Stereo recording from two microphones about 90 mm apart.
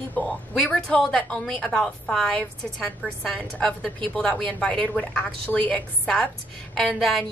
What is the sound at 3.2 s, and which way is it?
A woman's voice, 5° left (ahead or behind).